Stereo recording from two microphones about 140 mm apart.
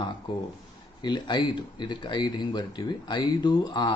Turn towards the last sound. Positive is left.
turn(degrees=30)  # may be behind; listen again after turning